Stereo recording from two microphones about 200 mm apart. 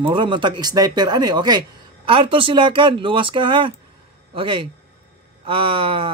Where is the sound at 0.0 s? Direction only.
25° right (ahead or behind).